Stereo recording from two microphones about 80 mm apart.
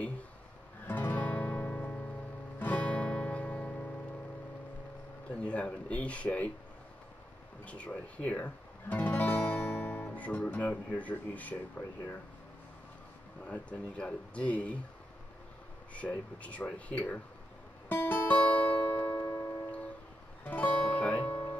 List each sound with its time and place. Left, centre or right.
0.8 s music: left
5.4 s speech: centre
7.6 s speech: centre
13.5 s speech: centre
16.0 s speech: centre
17.8 s music: left
19.2 s music: left
20.4 s guitar: left